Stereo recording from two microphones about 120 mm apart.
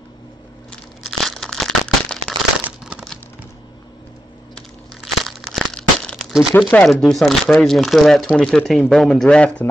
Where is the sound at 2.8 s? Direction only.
5° right (ahead or behind).